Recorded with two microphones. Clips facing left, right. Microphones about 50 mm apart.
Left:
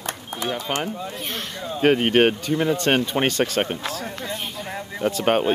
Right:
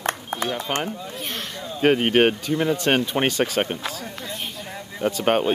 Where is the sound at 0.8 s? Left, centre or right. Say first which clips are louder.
Left 1 dB; centre.